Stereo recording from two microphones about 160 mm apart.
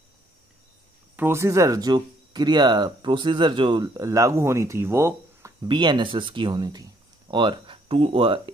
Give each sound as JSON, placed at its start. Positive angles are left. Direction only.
{"t": 1.1, "sound": "speech", "side_deg": -15}